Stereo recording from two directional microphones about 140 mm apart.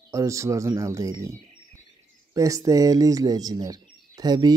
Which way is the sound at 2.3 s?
25° right (ahead or behind).